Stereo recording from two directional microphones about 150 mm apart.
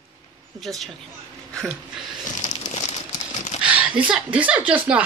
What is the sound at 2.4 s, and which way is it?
Crumpling, 50° left (ahead or behind).